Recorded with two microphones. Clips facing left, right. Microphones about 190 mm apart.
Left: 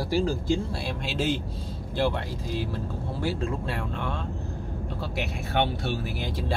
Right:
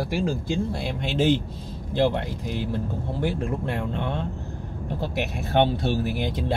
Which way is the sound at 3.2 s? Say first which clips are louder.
Right 2 dB; 20° right (ahead or behind).